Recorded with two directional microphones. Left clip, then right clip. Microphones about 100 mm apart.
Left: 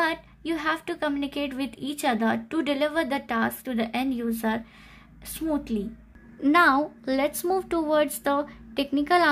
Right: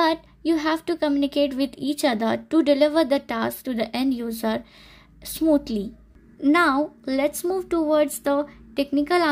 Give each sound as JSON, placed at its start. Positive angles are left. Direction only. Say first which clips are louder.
{"t": 0.0, "sound": "a woman's voice", "louder": "right 5 dB", "side_deg": -40}
{"t": 6.5, "sound": "a woman's voice", "louder": "even", "side_deg": -20}